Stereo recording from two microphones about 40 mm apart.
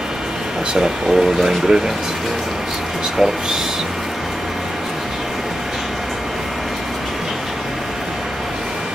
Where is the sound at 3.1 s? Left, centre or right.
Centre.